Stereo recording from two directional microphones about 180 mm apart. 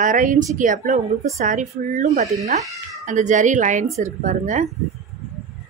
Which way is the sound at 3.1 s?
45° right (ahead or behind).